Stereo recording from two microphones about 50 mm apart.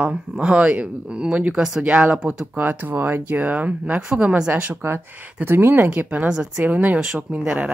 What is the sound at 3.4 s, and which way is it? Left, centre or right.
Speech, right.